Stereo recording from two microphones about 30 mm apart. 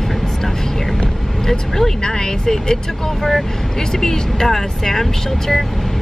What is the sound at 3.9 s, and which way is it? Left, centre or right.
Speech, centre.